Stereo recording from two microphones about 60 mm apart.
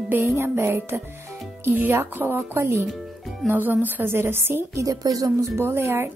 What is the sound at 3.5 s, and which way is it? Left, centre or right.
A woman's voice, right.